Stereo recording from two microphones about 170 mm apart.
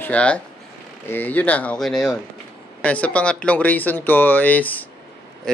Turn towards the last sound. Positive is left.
turn(degrees=10)  # may be behind; listen again after turning